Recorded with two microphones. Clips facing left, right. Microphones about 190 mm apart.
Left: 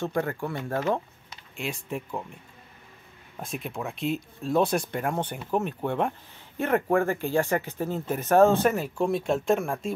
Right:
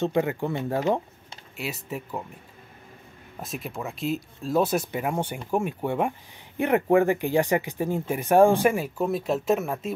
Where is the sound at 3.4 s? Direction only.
Centre (ahead or behind).